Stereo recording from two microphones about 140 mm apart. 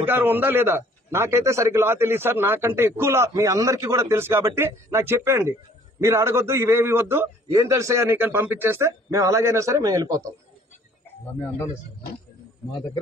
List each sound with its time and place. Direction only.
0.0 s a man's voice: 15° right (ahead or behind)